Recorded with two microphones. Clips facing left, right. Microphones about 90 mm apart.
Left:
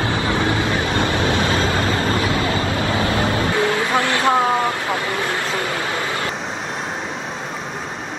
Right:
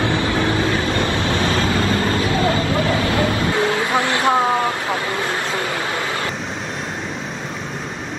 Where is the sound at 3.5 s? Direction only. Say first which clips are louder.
Even; 20° right (ahead or behind).